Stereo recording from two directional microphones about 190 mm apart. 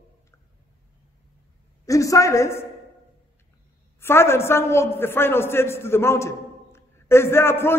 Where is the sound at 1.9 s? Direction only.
15° left (ahead or behind).